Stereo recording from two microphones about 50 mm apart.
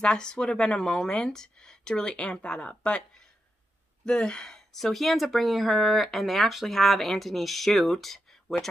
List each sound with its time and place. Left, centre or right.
0.0 s a woman's voice: centre
4.0 s speech: centre
4.6 s speech: centre